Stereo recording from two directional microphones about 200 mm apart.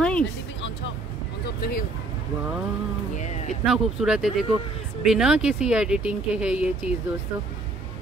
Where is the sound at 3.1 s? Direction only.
35° left (ahead or behind).